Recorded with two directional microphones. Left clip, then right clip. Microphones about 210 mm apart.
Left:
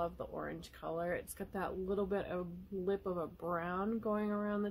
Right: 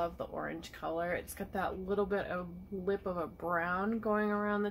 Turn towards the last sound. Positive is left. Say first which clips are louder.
# right 5 dB
turn(degrees=45)  # may be behind; listen again after turning